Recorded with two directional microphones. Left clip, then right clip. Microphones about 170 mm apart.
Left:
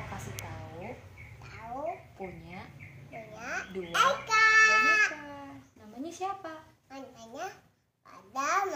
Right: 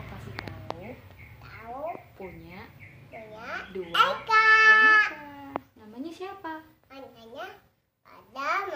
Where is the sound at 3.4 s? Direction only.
5° right (ahead or behind).